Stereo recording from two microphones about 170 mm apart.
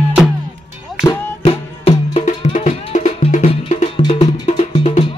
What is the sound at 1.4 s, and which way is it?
Music, 35° left (ahead or behind).